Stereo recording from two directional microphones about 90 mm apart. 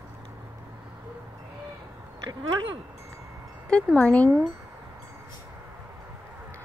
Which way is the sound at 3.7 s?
15° left (ahead or behind).